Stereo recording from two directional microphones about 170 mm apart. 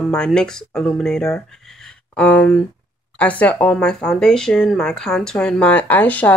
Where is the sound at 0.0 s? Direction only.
5° left (ahead or behind).